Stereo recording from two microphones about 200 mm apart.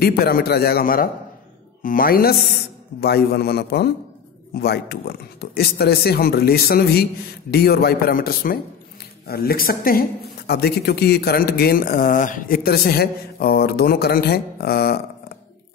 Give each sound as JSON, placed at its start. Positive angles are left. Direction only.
{"t": 0.0, "sound": "speech", "side_deg": 50}